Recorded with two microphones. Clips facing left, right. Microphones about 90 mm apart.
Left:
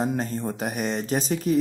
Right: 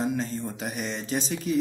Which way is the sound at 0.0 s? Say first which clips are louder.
Left 2 dB; 45° left (ahead or behind).